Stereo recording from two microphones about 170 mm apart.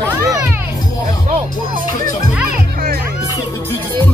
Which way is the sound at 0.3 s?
15° right (ahead or behind).